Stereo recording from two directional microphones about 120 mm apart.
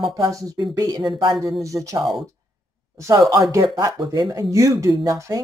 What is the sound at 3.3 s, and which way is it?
Speech, 25° right (ahead or behind).